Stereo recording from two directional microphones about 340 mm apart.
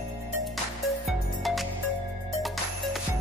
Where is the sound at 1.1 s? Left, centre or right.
Centre.